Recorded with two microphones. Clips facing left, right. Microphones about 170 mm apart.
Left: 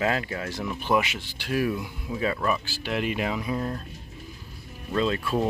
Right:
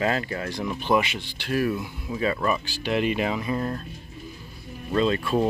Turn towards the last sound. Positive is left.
turn(degrees=0)  # may be behind; listen again after turning